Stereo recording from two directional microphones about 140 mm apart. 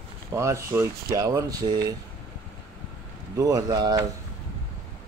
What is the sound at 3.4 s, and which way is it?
Speech, 25° right (ahead or behind).